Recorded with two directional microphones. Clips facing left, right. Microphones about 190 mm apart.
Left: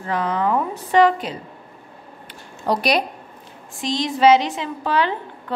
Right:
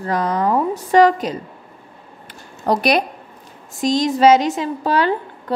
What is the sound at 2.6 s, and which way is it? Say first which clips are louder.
A woman's voice: right 3 dB; 50° right (ahead or behind).